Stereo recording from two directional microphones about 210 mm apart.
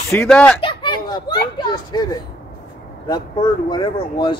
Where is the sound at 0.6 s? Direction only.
20° left (ahead or behind).